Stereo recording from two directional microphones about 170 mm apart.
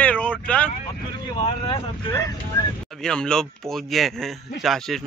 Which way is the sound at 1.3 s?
30° left (ahead or behind).